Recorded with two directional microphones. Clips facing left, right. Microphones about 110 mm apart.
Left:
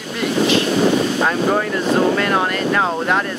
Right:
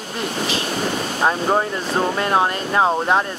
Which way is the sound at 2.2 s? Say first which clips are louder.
Left 1 dB; 25° right (ahead or behind).